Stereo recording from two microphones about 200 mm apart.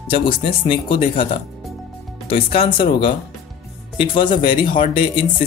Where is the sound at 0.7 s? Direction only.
25° left (ahead or behind).